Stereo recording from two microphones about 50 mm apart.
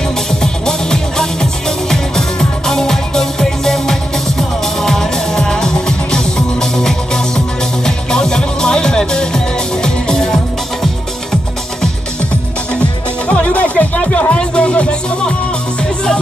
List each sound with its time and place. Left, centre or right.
0.3 s music: centre
13.3 s music: left